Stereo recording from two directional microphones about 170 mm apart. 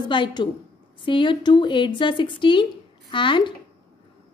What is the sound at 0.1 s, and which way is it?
A woman's voice, 25° left (ahead or behind).